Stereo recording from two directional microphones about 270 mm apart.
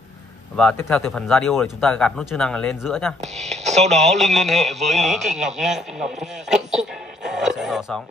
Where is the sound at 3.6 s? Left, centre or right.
Right.